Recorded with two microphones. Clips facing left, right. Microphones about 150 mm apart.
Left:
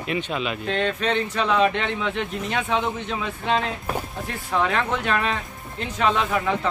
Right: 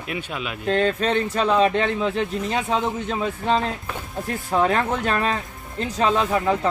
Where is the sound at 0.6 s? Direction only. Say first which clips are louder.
Right 6 dB; 40° right (ahead or behind).